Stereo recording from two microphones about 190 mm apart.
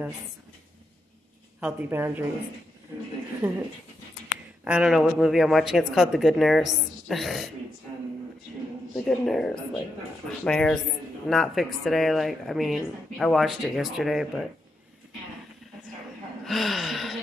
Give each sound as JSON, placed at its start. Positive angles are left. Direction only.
{"t": 1.6, "sound": "speech", "side_deg": -10}
{"t": 3.4, "sound": "speech", "side_deg": -10}
{"t": 4.6, "sound": "speech", "side_deg": -5}
{"t": 8.9, "sound": "speech", "side_deg": 0}
{"t": 16.4, "sound": "speech", "side_deg": 0}